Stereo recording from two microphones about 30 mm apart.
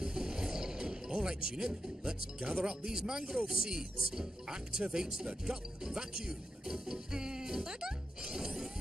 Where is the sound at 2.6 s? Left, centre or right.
Right.